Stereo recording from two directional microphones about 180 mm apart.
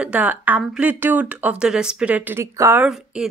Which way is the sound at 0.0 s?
10° right (ahead or behind).